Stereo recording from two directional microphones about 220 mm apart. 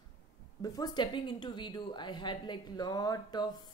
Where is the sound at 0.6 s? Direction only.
15° left (ahead or behind).